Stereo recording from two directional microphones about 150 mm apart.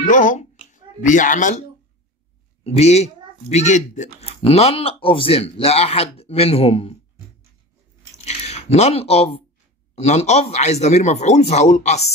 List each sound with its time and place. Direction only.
0.0 s music: 60° left (ahead or behind)
2.6 s speech: 45° left (ahead or behind)
4.4 s speech: 40° left (ahead or behind)
8.2 s a sound: 45° left (ahead or behind)
9.9 s speech: 45° left (ahead or behind)